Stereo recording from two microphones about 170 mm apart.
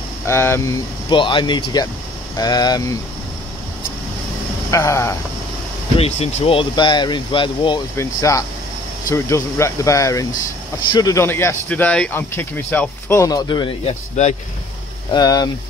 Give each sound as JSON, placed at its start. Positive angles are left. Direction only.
{"t": 0.3, "sound": "speech", "side_deg": 15}
{"t": 1.1, "sound": "speech", "side_deg": 30}
{"t": 4.6, "sound": "speech", "side_deg": 20}
{"t": 5.9, "sound": "speech", "side_deg": 40}
{"t": 7.9, "sound": "speech", "side_deg": 15}
{"t": 14.2, "sound": "speech", "side_deg": 45}
{"t": 15.1, "sound": "speech", "side_deg": 20}